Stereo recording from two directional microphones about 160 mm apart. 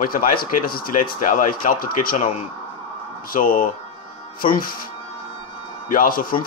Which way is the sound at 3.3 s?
60° left (ahead or behind).